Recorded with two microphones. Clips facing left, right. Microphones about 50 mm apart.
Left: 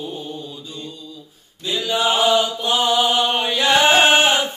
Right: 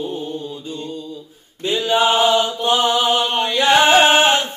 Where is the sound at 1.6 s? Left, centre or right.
Right.